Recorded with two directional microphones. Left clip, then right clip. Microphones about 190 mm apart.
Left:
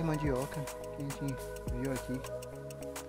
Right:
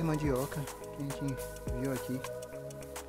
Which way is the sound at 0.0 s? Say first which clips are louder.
Right 1 dB; 10° right (ahead or behind).